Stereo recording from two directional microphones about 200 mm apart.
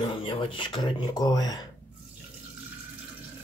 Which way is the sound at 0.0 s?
25° left (ahead or behind).